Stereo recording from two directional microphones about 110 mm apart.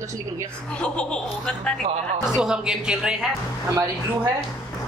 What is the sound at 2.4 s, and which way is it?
Speech, 5° right (ahead or behind).